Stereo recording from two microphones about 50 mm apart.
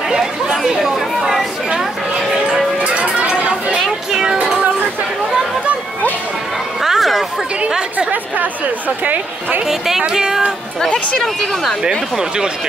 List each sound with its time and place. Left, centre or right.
0.5 s chatter: centre
1.7 s music: centre
2.8 s chatter: right
4.1 s music: centre
6.8 s chatter: centre
8.1 s a woman's voice: right
9.7 s a woman's voice: centre
11.2 s speech: centre
11.8 s a woman's voice: centre